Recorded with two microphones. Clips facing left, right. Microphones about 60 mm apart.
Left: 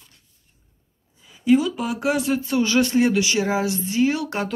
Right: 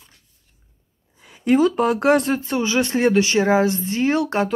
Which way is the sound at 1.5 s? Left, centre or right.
Right.